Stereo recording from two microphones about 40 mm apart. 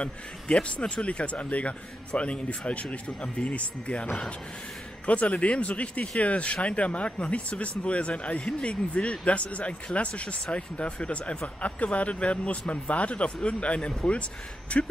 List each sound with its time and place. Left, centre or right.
0.0 s speech: left